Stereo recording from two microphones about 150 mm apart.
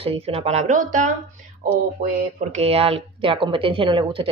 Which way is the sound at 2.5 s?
40° right (ahead or behind).